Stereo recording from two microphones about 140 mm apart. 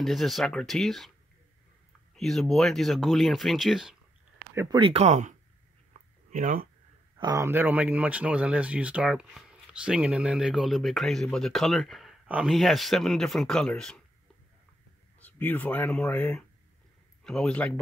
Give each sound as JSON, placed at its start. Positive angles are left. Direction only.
{"t": 0.0, "sound": "speech", "side_deg": 0}
{"t": 2.1, "sound": "speech", "side_deg": 0}
{"t": 4.7, "sound": "speech", "side_deg": -40}
{"t": 5.0, "sound": "speech", "side_deg": -60}
{"t": 5.9, "sound": "a sound", "side_deg": -70}
{"t": 6.3, "sound": "speech", "side_deg": -80}
{"t": 7.2, "sound": "speech", "side_deg": -25}
{"t": 15.1, "sound": "a man's voice", "side_deg": 10}